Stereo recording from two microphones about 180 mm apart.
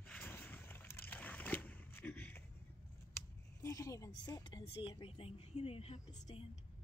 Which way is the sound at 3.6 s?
15° left (ahead or behind).